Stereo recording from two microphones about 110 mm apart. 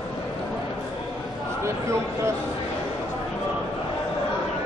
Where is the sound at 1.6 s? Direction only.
25° right (ahead or behind).